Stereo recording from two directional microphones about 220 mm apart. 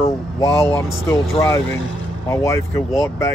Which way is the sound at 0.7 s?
10° left (ahead or behind).